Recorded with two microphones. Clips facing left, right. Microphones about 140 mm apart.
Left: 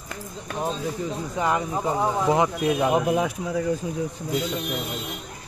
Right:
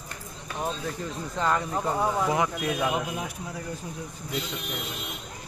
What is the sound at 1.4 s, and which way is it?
Speech, 15° left (ahead or behind).